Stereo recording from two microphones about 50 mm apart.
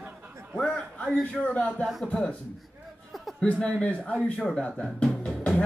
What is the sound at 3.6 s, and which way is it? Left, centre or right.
Speech, left.